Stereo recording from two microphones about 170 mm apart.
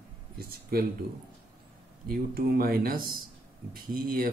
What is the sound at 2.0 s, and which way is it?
Speech, 60° right (ahead or behind).